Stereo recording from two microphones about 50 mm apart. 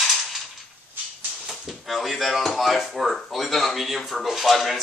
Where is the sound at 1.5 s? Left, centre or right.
Centre.